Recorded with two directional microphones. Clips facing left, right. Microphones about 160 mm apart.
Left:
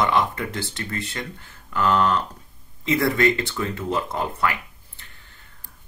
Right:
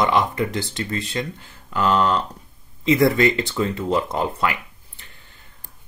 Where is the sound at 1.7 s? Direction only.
20° right (ahead or behind).